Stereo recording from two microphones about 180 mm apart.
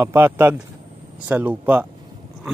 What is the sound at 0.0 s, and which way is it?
Speech, 15° right (ahead or behind).